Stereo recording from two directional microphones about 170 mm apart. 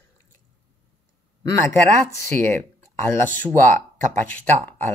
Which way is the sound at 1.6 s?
15° left (ahead or behind).